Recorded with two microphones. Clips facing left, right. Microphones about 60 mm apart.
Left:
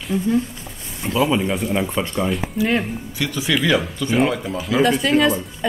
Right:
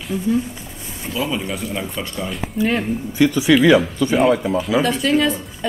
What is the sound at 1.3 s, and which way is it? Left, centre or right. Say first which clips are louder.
Speech: left 4 dB; centre.